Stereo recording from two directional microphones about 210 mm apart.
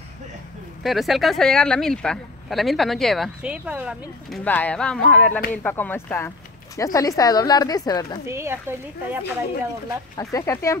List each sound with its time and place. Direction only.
0.8 s speech: centre (ahead or behind)
4.5 s a woman's voice: 5° left (ahead or behind)
8.3 s speech: 10° right (ahead or behind)
10.1 s a woman's voice: 15° left (ahead or behind)